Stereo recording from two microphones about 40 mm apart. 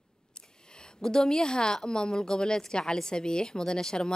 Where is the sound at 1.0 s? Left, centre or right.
Centre.